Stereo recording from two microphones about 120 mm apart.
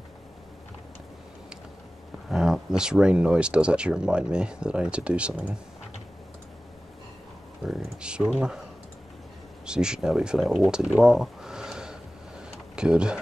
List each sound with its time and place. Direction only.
2.2 s speech: 5° right (ahead or behind)
7.6 s speech: 5° right (ahead or behind)
9.7 s speech: 5° right (ahead or behind)
10.7 s a sound: 5° right (ahead or behind)
12.7 s speech: 5° right (ahead or behind)